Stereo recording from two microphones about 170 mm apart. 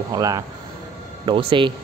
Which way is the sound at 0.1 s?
20° right (ahead or behind).